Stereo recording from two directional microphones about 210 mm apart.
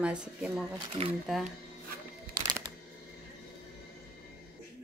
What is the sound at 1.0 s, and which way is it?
Speech, 30° right (ahead or behind).